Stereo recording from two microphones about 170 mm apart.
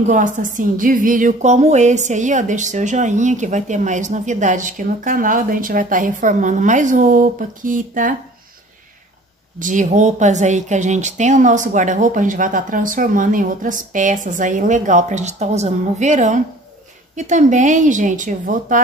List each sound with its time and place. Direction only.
0.0 s speech: 50° right (ahead or behind)
9.6 s speech: 50° right (ahead or behind)